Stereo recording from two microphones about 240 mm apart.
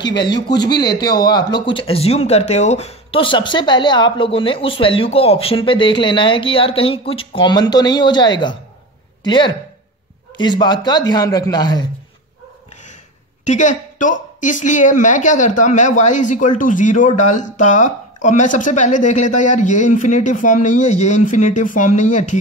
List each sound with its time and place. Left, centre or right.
0.0 s speech: centre
13.4 s a woman's voice: left